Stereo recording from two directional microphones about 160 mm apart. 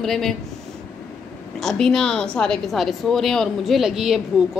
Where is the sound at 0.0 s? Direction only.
Centre (ahead or behind).